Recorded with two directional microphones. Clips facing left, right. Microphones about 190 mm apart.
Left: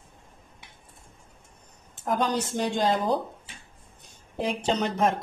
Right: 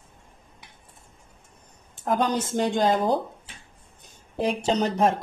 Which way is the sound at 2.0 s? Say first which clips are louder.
Right 2 dB; 50° right (ahead or behind).